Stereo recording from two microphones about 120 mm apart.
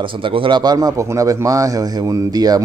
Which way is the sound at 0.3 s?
40° right (ahead or behind).